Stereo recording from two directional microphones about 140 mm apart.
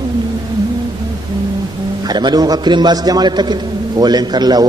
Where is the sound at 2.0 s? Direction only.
30° right (ahead or behind).